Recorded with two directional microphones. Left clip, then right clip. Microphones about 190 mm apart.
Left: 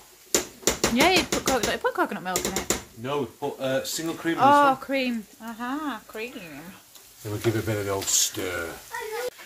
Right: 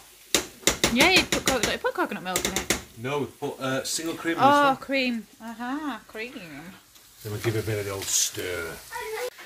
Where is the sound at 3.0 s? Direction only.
15° left (ahead or behind).